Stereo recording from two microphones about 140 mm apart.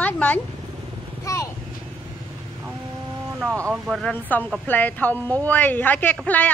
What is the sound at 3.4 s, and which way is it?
Speech, 20° right (ahead or behind).